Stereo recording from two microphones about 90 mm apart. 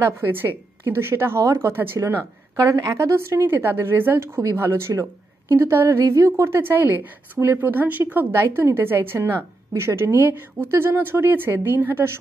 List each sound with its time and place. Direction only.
0.0 s a woman's voice: 25° right (ahead or behind)